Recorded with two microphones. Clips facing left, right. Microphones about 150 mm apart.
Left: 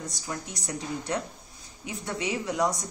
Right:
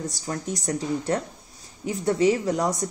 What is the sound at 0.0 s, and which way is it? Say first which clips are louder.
Speech: right 6 dB; 45° right (ahead or behind).